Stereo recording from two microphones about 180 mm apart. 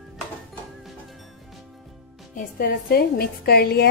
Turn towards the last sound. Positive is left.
turn(degrees=60)  # may be behind; listen again after turning